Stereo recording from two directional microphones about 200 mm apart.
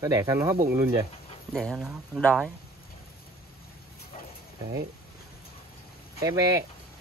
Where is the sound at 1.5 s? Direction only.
Centre (ahead or behind).